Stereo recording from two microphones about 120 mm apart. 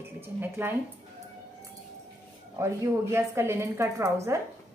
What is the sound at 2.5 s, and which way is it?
A woman's voice, 20° right (ahead or behind).